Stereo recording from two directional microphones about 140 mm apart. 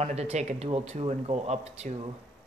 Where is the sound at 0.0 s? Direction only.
50° right (ahead or behind).